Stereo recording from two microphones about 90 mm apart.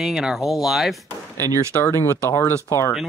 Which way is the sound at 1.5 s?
35° right (ahead or behind).